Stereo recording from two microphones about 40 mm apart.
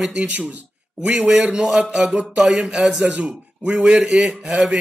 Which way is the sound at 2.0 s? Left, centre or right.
Right.